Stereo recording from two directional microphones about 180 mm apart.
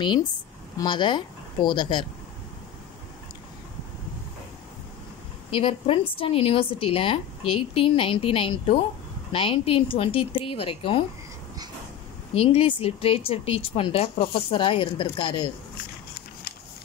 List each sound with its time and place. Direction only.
0.7 s speech: 25° left (ahead or behind)
5.5 s a woman's voice: 30° left (ahead or behind)
12.4 s a woman's voice: 30° left (ahead or behind)